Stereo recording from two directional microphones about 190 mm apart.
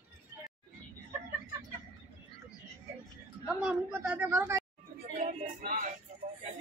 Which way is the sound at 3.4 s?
5° right (ahead or behind).